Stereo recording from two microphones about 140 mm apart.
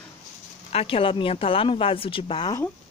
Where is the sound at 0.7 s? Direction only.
45° left (ahead or behind).